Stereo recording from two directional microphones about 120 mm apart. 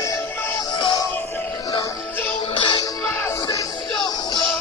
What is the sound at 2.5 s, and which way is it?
Music, 45° left (ahead or behind).